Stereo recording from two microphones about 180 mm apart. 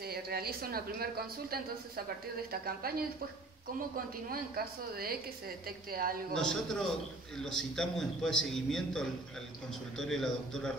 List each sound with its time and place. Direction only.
0.0 s a woman's voice: 60° right (ahead or behind)
4.6 s a woman's voice: 55° right (ahead or behind)
6.3 s a man's voice: 5° left (ahead or behind)